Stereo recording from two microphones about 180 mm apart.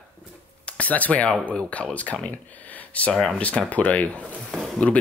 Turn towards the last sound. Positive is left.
turn(degrees=5)  # may be behind; listen again after turning